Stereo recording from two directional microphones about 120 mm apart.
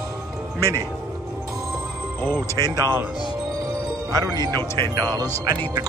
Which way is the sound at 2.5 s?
35° right (ahead or behind).